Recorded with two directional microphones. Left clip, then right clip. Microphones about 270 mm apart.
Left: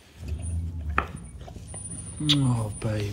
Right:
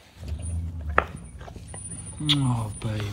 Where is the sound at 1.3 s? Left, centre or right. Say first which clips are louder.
Right 2 dB; centre.